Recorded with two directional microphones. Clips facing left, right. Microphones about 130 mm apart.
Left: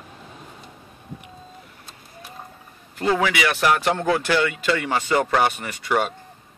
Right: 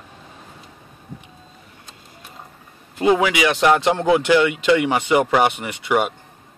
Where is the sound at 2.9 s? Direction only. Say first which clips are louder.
Right 4 dB; 20° right (ahead or behind).